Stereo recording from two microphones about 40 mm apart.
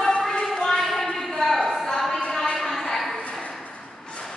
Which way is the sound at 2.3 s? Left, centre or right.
Left.